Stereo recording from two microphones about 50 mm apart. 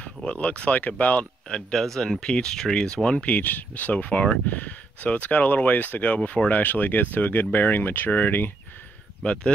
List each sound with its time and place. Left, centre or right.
0.2 s speech: left
1.5 s speech: centre
3.3 s speech: left
9.2 s speech: centre